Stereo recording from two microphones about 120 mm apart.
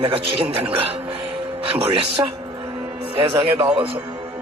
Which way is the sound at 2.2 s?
30° right (ahead or behind).